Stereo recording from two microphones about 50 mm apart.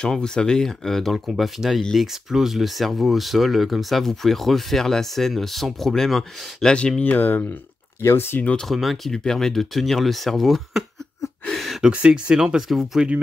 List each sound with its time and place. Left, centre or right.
0.0 s speech: centre
7.0 s speech: left
8.0 s speech: left
8.6 s speech: centre
9.1 s speech: centre
11.4 s a sound: centre
11.8 s speech: centre